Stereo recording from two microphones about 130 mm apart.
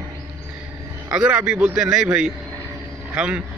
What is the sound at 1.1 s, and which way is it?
A man's voice, 5° right (ahead or behind).